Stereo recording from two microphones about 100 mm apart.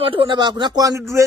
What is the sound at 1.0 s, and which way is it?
Speech, 30° right (ahead or behind).